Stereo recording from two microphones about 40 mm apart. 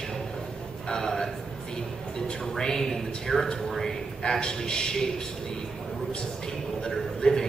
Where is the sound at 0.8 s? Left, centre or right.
Centre.